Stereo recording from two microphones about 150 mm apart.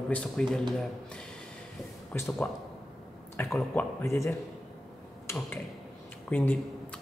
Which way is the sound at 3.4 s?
15° left (ahead or behind).